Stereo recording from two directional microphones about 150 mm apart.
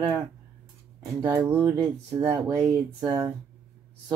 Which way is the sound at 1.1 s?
20° right (ahead or behind).